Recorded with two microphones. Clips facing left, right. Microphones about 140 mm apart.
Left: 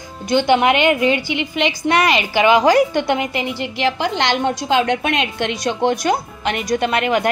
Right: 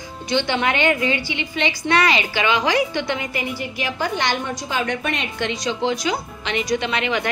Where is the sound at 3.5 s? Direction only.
85° left.